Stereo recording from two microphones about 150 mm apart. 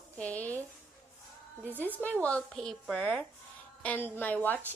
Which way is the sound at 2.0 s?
10° left (ahead or behind).